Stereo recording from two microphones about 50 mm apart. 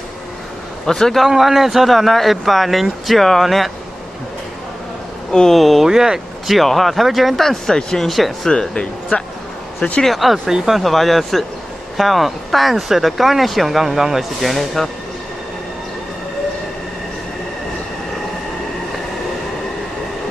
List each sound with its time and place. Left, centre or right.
0.8 s speech: centre
1.2 s speech: centre
5.3 s speech: centre
5.6 s speech: centre
5.9 s speech: centre
8.5 s speech: centre
10.0 s speech: centre